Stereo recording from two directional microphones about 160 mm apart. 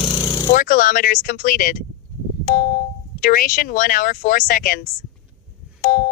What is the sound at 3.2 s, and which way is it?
Speech, 60° left (ahead or behind).